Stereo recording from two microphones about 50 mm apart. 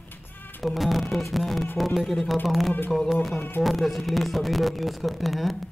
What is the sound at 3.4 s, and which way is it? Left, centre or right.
Music, left.